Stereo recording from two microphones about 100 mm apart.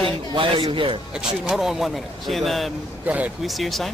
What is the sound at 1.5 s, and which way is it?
Speech, 5° right (ahead or behind).